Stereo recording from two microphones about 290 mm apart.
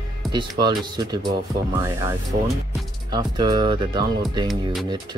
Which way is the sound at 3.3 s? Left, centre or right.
Centre.